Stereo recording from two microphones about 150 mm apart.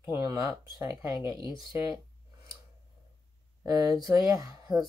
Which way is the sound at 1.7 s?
25° right (ahead or behind).